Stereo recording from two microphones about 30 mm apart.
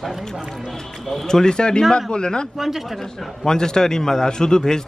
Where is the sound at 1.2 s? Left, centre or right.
Left.